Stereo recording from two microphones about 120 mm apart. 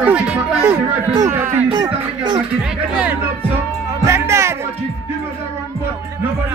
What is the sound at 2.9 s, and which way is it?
Music, 10° right (ahead or behind).